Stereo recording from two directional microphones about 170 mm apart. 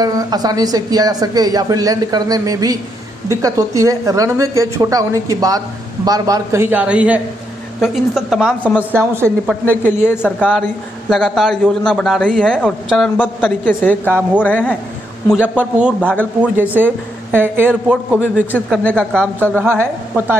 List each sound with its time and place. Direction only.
0.0 s a woman's voice: 20° right (ahead or behind); by 8.7 s 5° right (ahead or behind)
8.9 s a woman's voice: 15° right (ahead or behind)
10.0 s a man's voice: 10° left (ahead or behind)
14.0 s a woman's voice: 10° right (ahead or behind)
14.4 s speech: 10° left (ahead or behind)
15.4 s a woman's voice: 10° right (ahead or behind)
16.0 s speech: 5° left (ahead or behind)
16.5 s a woman's voice: 10° right (ahead or behind)
18.7 s a man's voice: 5° left (ahead or behind)
19.6 s a woman's voice: 15° right (ahead or behind)